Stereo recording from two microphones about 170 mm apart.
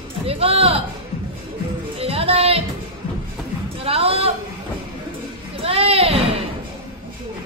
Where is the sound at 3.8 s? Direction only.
35° right (ahead or behind).